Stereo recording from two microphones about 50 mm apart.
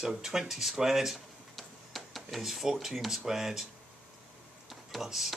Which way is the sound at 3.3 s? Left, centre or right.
Centre.